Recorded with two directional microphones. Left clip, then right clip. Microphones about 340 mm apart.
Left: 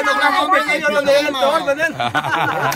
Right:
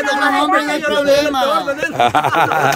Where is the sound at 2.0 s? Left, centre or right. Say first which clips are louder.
Right 5 dB; centre.